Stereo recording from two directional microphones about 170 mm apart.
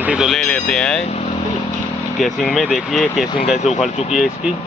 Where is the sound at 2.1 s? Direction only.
Centre (ahead or behind).